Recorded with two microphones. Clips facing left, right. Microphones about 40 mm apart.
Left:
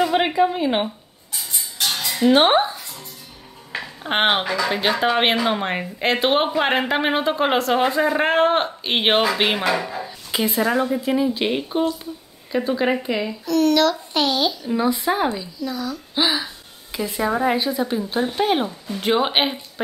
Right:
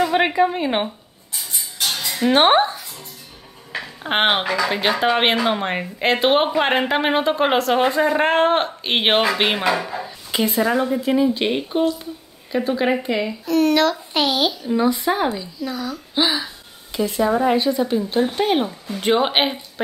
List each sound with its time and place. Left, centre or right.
0.3 s a woman's voice: right
0.7 s rodents: centre
2.3 s speech: right
2.8 s music: centre
4.0 s speech: centre
13.5 s a child's voice: right
14.6 s speech: centre
15.6 s a child's voice: centre
16.2 s speech: centre